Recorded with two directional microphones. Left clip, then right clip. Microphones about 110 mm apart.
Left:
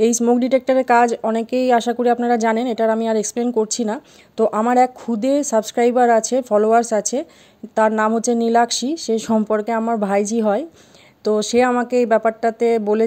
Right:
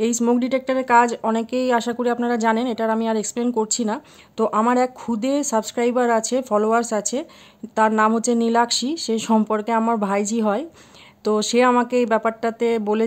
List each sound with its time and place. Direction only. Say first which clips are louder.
0.4 s speech: left 5 dB; 35° left (ahead or behind); by 10.0 s 10° left (ahead or behind)
10.0 s speech: left 3 dB; 25° left (ahead or behind)